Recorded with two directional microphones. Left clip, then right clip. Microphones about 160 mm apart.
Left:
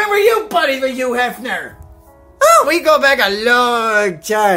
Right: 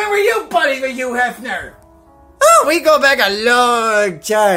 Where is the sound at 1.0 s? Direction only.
15° left (ahead or behind).